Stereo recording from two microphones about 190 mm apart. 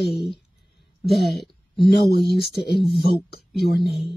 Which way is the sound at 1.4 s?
Centre (ahead or behind).